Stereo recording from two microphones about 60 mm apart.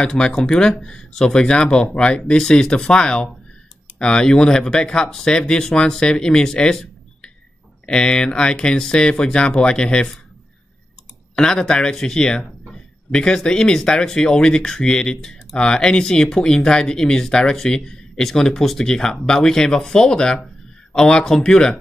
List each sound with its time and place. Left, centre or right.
0.0 s speech: centre
11.3 s speech: centre